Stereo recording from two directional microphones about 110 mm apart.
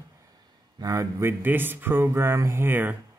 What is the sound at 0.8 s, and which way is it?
Speech, 30° right (ahead or behind).